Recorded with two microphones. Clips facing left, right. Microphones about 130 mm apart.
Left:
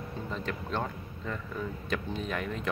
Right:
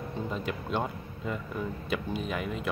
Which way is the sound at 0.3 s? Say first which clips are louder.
Right 1 dB; 15° right (ahead or behind).